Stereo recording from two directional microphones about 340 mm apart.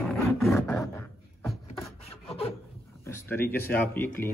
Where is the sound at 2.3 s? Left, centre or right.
Centre.